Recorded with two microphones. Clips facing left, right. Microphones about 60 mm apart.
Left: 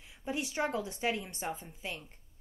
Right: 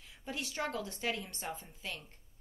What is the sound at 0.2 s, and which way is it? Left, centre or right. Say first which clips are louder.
Speech: left 5 dB; centre.